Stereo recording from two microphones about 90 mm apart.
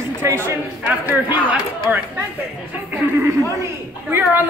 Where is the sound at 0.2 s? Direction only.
25° right (ahead or behind).